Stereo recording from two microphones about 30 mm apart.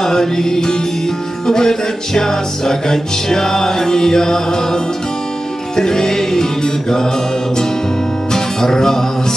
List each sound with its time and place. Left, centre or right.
0.0 s music: centre
5.8 s music: centre
8.3 s music: centre